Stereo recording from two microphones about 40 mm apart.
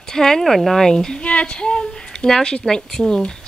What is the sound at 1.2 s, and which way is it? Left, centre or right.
Speech, left.